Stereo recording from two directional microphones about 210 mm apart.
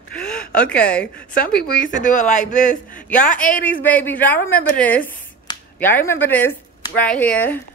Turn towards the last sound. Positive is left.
turn(degrees=10)  # may be behind; listen again after turning